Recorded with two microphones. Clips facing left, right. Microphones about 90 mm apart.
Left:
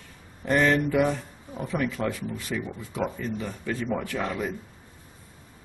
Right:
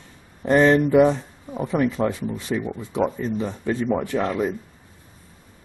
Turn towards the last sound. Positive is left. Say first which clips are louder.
# right 6 dB
turn(degrees=-20)  # may be behind; listen again after turning